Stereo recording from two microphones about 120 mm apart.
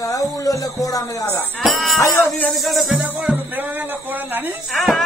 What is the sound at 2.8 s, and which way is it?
Speech, 10° right (ahead or behind).